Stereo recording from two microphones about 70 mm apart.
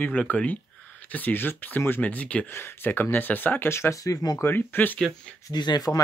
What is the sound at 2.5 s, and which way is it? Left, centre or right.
Speech, left.